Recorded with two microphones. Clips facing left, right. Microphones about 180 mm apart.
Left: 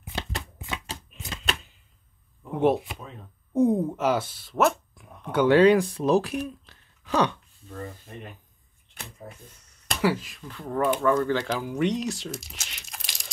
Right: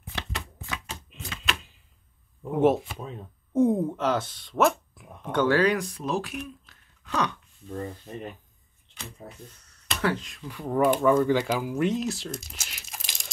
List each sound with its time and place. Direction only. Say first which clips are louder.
0.7 s shuffling cards: left 2 dB; 35° left (ahead or behind)
2.6 s speech: right 1 dB; centre (ahead or behind)
5.4 s speech: left 5 dB; 25° left (ahead or behind)
10.0 s speech: left 3 dB; 5° left (ahead or behind)
10.5 s speech: right 2 dB; 10° right (ahead or behind)
12.4 s crumpling: even; centre (ahead or behind)